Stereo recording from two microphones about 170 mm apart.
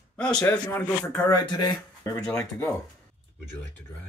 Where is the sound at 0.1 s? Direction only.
5° left (ahead or behind).